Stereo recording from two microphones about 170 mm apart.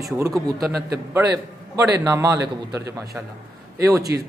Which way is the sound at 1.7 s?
15° right (ahead or behind).